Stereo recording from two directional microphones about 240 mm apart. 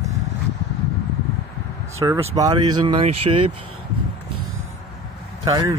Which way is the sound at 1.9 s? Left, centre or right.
Centre.